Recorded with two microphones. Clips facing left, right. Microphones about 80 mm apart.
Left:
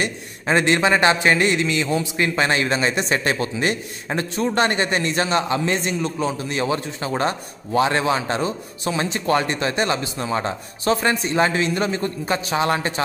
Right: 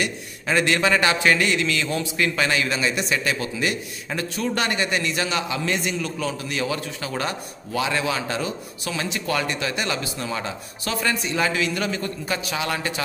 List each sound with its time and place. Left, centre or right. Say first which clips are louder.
0.0 s a man's voice: left 2 dB; left